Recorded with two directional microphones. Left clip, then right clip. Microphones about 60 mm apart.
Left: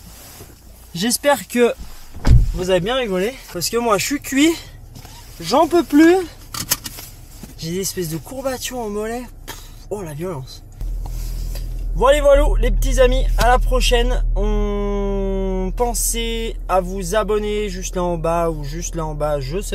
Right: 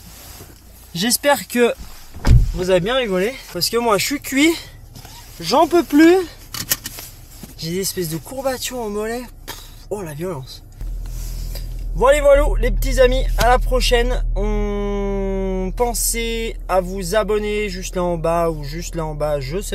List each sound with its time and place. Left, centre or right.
1.2 s speech: right
6.5 s a sound: left
7.0 s speech: right